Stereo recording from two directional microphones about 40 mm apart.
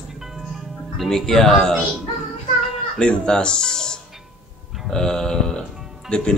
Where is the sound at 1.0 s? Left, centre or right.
Centre.